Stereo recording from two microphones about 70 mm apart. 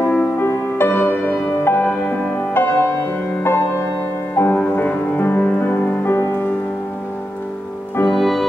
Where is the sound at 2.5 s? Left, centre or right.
Left.